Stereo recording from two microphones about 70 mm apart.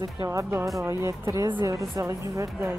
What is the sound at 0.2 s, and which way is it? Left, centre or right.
Speech, right.